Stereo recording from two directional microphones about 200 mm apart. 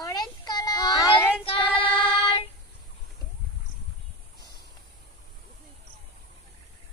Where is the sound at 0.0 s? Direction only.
20° left (ahead or behind).